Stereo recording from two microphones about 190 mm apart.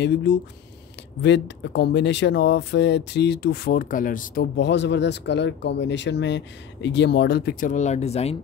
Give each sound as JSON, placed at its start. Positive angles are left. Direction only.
{"t": 0.0, "sound": "speech", "side_deg": 65}
{"t": 4.6, "sound": "speech", "side_deg": 65}